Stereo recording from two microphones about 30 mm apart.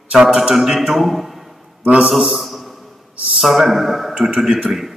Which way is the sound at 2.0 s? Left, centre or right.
Centre.